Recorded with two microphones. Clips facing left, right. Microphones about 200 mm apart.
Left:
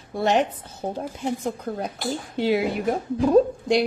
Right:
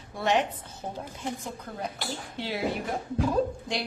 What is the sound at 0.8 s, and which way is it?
Speech, 45° left (ahead or behind).